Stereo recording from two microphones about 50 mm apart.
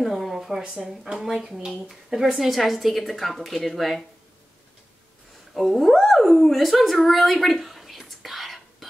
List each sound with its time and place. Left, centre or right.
0.0 s a sound: centre
0.7 s speech: right
1.1 s a woman's voice: centre
5.5 s a woman's voice: centre
8.2 s whispering: centre